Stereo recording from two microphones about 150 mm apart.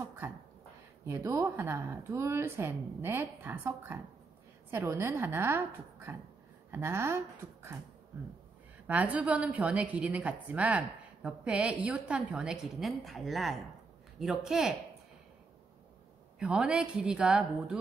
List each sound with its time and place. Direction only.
1.0 s a woman's voice: 15° right (ahead or behind)
8.8 s a woman's voice: 10° right (ahead or behind)
16.3 s a woman's voice: 5° right (ahead or behind)